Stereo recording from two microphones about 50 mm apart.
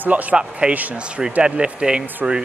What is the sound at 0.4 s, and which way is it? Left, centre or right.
A man's voice, right.